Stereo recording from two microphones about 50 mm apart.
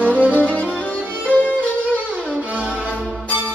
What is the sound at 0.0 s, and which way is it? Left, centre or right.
Music, right.